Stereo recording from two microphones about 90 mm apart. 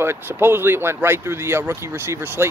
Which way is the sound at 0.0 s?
25° right (ahead or behind).